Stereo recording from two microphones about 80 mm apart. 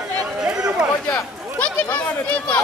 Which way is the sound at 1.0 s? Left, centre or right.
Centre.